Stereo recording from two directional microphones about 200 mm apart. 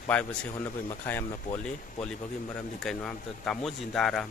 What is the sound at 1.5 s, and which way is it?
Speech, 40° left (ahead or behind).